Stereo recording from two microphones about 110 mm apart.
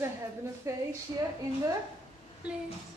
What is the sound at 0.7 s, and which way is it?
Speech, 30° right (ahead or behind).